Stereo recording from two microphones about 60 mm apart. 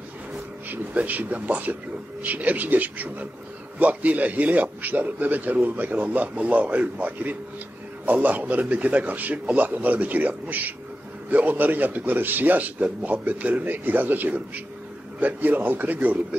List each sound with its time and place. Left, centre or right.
0.7 s a man's voice: right